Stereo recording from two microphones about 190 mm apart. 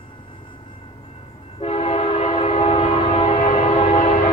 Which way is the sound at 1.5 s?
30° left (ahead or behind).